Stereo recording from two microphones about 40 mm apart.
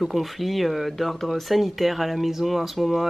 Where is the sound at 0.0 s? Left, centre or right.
Centre.